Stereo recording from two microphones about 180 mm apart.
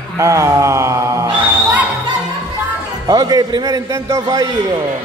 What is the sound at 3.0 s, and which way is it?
A man's voice, 20° right (ahead or behind).